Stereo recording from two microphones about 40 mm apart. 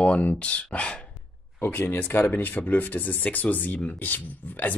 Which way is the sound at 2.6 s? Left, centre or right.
Left.